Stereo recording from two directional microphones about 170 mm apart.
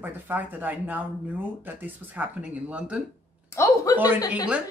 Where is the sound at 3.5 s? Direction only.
15° left (ahead or behind).